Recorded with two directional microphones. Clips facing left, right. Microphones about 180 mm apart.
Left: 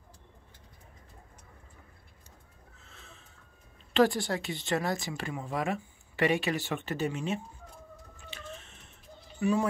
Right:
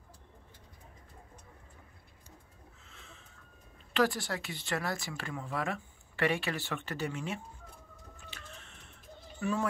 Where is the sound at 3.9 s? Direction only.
25° left (ahead or behind).